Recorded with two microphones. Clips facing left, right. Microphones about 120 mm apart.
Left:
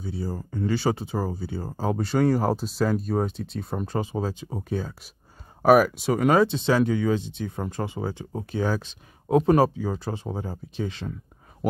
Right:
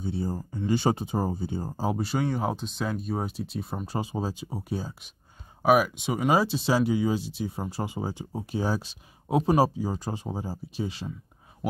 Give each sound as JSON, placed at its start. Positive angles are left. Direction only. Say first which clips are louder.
{"t": 0.0, "sound": "speech", "louder": "right 1 dB", "side_deg": -25}
{"t": 0.4, "sound": "speech", "louder": "left 1 dB", "side_deg": -10}
{"t": 0.7, "sound": "speech", "louder": "right 1 dB", "side_deg": -20}
{"t": 1.8, "sound": "speech", "louder": "left 5 dB", "side_deg": -5}
{"t": 5.6, "sound": "speech", "louder": "left 4 dB", "side_deg": 0}